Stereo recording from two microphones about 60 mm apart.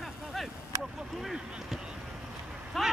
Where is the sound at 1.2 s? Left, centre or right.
Centre.